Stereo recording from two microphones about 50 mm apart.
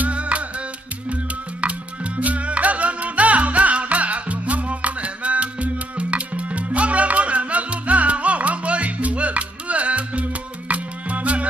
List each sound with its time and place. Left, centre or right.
0.0 s music: right